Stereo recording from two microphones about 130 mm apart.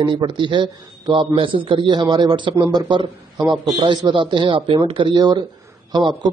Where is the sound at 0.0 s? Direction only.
40° right (ahead or behind).